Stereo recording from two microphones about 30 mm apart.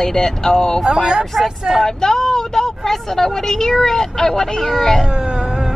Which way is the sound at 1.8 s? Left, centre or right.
Left.